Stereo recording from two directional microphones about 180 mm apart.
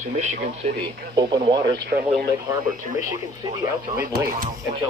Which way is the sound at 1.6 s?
70° right (ahead or behind).